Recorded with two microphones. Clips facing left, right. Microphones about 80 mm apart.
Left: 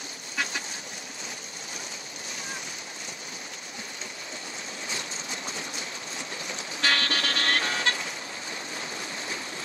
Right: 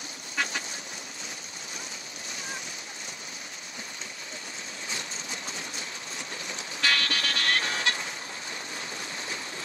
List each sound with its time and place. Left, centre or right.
6.8 s vehicle: left